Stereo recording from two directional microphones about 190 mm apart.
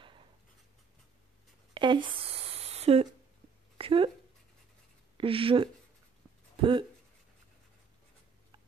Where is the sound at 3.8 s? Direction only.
30° right (ahead or behind).